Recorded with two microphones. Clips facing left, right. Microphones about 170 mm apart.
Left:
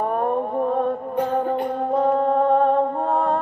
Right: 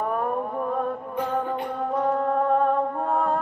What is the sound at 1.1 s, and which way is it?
Music, 40° left (ahead or behind).